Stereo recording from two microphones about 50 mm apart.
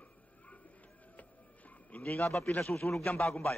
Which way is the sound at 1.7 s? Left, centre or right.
Left.